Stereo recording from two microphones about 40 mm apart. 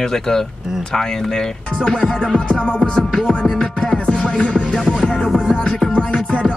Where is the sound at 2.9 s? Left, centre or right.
Centre.